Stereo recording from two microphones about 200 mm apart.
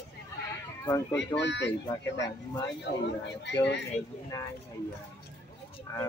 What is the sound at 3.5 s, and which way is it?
Speech, 65° left (ahead or behind).